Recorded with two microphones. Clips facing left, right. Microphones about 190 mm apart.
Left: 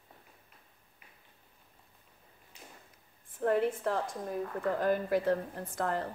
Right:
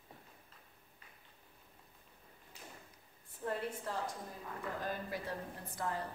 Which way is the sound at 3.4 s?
65° left (ahead or behind).